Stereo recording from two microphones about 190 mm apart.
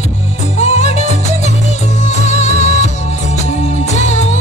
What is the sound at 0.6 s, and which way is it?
Music, 35° left (ahead or behind).